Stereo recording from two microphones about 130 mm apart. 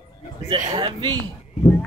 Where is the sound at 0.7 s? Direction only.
35° right (ahead or behind).